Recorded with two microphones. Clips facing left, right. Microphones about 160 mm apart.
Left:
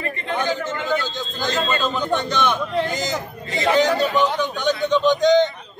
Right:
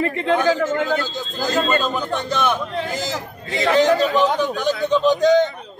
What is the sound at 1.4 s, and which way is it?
Speech, 40° right (ahead or behind).